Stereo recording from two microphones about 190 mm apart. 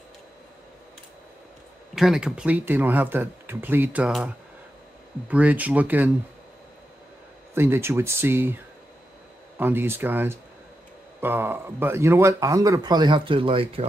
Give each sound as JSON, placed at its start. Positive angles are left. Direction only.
{"t": 2.0, "sound": "speech", "side_deg": 0}
{"t": 5.3, "sound": "speech", "side_deg": -10}
{"t": 7.5, "sound": "speech", "side_deg": -10}
{"t": 9.6, "sound": "speech", "side_deg": -10}